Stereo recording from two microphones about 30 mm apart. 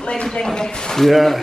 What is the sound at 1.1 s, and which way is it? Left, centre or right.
Speech, centre.